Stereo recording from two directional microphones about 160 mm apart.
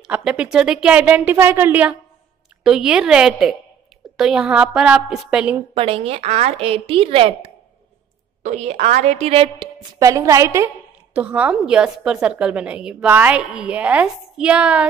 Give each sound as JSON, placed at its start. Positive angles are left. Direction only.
{"t": 0.0, "sound": "a woman's voice", "side_deg": -5}
{"t": 5.8, "sound": "a woman's voice", "side_deg": -35}
{"t": 9.9, "sound": "a woman's voice", "side_deg": -20}
{"t": 11.1, "sound": "a woman's voice", "side_deg": -10}